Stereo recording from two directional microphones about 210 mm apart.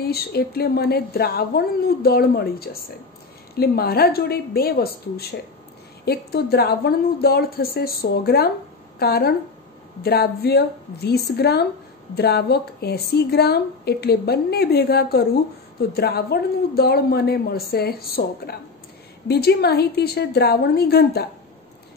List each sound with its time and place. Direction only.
0.0 s a woman's voice: 50° left (ahead or behind)